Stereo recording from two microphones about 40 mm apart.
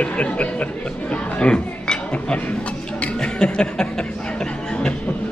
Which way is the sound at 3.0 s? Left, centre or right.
Left.